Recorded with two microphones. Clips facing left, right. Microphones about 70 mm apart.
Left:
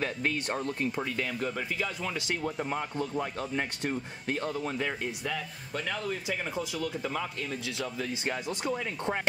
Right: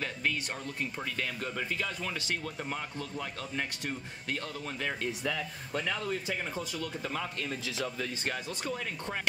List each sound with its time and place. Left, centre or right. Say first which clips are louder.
0.9 s speech: left 4 dB; centre
2.4 s speech: left 5 dB; left
3.5 s speech: left 3 dB; left
4.8 s speech: even; centre
8.0 s speech: left 2 dB; centre